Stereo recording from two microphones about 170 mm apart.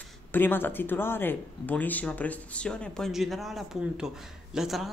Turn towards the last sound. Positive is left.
turn(degrees=0)  # may be behind; listen again after turning